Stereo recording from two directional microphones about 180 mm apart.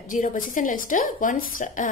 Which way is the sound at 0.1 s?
45° left (ahead or behind).